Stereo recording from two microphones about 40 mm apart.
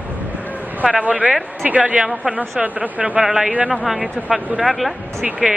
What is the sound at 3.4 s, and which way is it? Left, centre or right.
Speech, right.